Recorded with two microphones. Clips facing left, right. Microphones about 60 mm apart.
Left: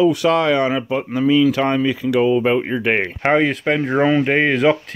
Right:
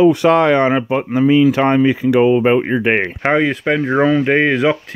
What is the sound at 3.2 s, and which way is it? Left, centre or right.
Speech, centre.